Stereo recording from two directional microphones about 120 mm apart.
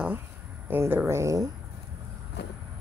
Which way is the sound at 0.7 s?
20° right (ahead or behind).